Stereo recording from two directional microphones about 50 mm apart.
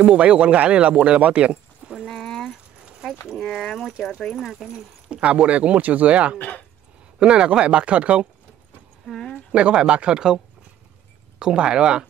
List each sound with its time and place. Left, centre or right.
0.0 s speech: right
2.0 s a sound: centre
3.3 s speech: centre
4.4 s speech: centre
4.7 s speech: right
6.3 s speech: left
7.2 s speech: right
9.0 s a sound: centre
9.5 s speech: right